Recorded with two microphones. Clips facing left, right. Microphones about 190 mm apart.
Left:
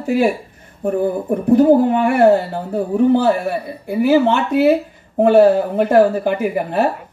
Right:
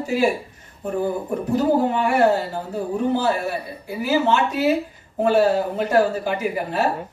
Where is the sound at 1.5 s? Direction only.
55° left (ahead or behind).